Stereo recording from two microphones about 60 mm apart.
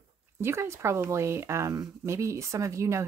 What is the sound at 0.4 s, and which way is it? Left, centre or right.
Speech, right.